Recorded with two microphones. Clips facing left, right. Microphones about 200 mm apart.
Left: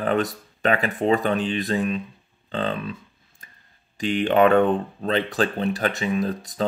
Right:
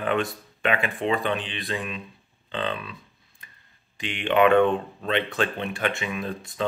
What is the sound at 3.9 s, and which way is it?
Speech, 40° left (ahead or behind).